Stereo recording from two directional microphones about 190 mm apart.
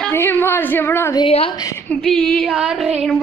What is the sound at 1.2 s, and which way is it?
Speech, 30° left (ahead or behind).